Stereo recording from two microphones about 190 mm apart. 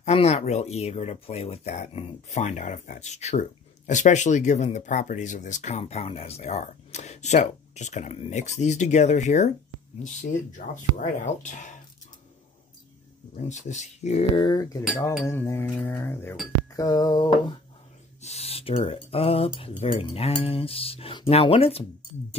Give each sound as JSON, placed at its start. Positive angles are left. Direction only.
{"t": 0.0, "sound": "speech", "side_deg": 35}
{"t": 10.7, "sound": "speech", "side_deg": 40}
{"t": 13.4, "sound": "speech", "side_deg": 40}
{"t": 14.3, "sound": "speech", "side_deg": 20}
{"t": 15.2, "sound": "music", "side_deg": 15}
{"t": 16.7, "sound": "speech", "side_deg": 20}
{"t": 18.2, "sound": "speech", "side_deg": 35}